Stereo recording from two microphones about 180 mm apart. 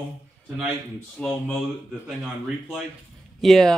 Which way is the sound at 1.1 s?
5° left (ahead or behind).